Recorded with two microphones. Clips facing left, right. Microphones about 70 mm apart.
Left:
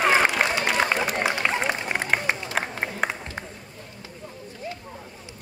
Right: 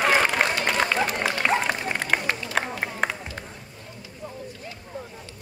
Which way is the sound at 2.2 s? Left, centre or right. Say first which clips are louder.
Left 1 dB; left.